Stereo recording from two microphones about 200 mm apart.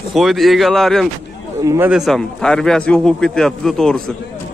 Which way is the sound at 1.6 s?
15° right (ahead or behind).